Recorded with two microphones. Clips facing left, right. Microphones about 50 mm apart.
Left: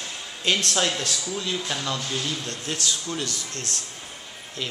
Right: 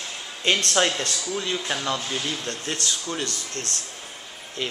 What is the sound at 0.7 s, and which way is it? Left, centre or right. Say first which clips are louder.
Speech: right 2 dB; centre.